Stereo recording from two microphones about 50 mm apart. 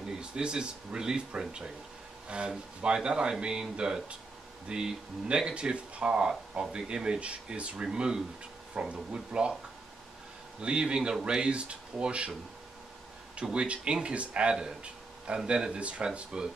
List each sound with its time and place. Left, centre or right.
0.2 s speech: centre
10.6 s speech: centre
13.4 s speech: centre